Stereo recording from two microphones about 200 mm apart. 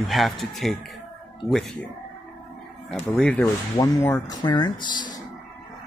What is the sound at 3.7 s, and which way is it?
Speech, 15° left (ahead or behind).